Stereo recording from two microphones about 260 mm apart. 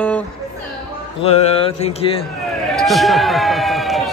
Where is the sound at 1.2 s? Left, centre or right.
Left.